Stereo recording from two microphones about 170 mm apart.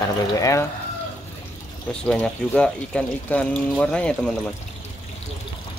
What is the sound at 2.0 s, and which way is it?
Speech, 5° left (ahead or behind).